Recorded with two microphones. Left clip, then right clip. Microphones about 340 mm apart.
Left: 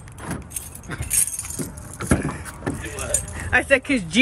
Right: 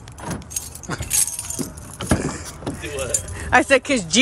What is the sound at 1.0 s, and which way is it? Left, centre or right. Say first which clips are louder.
Keys jangling: right 2 dB; right.